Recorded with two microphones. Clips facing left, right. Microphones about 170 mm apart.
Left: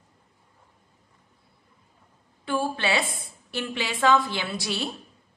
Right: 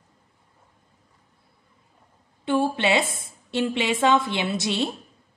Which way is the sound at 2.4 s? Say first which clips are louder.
Right 5 dB; 20° right (ahead or behind).